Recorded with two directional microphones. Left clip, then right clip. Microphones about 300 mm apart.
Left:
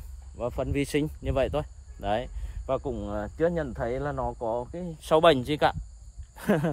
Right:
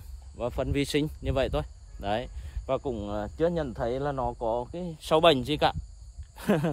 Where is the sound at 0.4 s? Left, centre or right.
Centre.